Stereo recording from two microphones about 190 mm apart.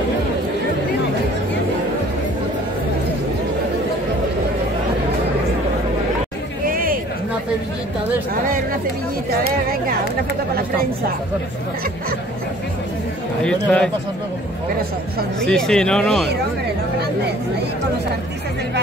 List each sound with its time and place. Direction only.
6.6 s a sound: 50° right (ahead or behind)
13.4 s speech: 5° left (ahead or behind)
15.4 s speech: 5° left (ahead or behind)